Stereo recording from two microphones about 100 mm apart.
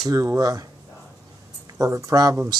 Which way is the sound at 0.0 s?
35° right (ahead or behind).